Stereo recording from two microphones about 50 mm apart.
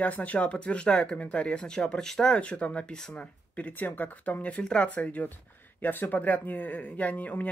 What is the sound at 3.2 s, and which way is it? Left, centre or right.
Speech, left.